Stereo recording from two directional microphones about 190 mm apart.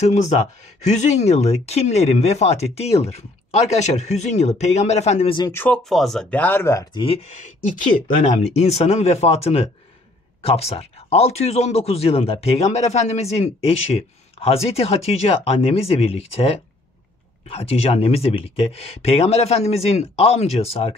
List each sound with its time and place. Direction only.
0.0 s speech: 35° left (ahead or behind)
5.5 s speech: 10° left (ahead or behind); by 20.9 s 30° left (ahead or behind)